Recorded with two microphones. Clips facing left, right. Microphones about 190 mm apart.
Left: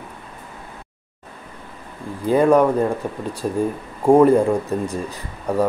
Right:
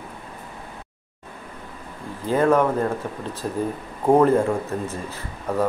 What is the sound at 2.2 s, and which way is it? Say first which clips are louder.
Speech: left 4 dB; 15° left (ahead or behind).